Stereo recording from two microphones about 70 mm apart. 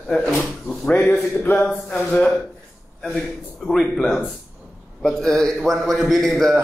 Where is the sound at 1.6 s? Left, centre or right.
Centre.